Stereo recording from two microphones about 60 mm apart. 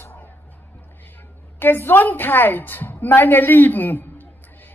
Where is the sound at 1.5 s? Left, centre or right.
Left.